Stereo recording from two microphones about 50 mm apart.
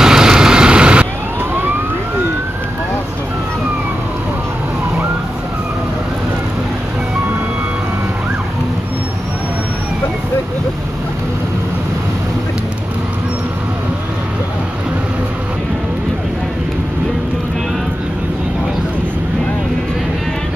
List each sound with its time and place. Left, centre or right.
0.0 s vehicle: centre